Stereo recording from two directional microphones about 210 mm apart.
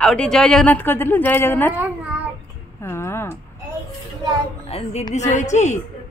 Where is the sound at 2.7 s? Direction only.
10° left (ahead or behind).